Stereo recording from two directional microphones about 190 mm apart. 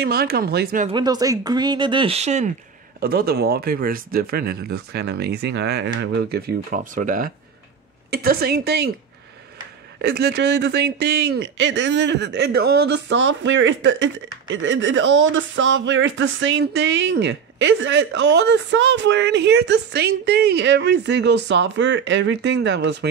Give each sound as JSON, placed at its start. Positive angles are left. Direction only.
{"t": 0.0, "sound": "speech", "side_deg": -55}
{"t": 0.8, "sound": "speech", "side_deg": -20}
{"t": 3.0, "sound": "speech", "side_deg": -55}
{"t": 10.0, "sound": "a man's voice", "side_deg": -60}